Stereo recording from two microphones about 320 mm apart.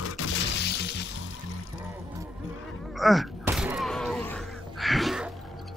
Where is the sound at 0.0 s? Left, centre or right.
Left.